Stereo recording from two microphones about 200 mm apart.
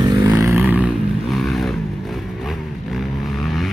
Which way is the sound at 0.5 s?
5° right (ahead or behind).